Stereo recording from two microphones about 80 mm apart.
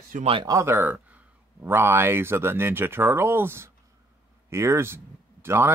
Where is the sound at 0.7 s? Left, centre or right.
Right.